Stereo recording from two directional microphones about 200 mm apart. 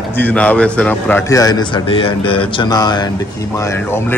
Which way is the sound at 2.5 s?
20° left (ahead or behind).